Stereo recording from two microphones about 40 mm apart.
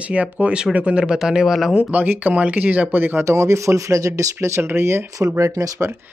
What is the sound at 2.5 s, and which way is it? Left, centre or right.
Speech, right.